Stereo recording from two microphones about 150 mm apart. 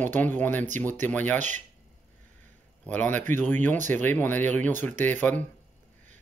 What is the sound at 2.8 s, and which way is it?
Speech, 10° left (ahead or behind).